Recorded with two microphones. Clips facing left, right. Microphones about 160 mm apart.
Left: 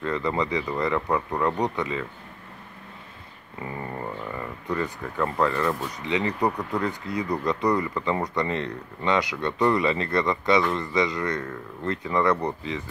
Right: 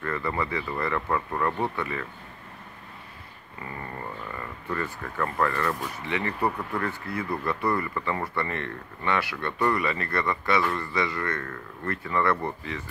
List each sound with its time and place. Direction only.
0.0 s speech: 20° left (ahead or behind)
4.4 s speech: 15° left (ahead or behind)